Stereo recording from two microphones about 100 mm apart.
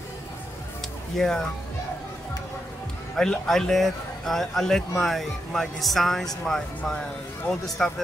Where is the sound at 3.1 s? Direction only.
5° left (ahead or behind).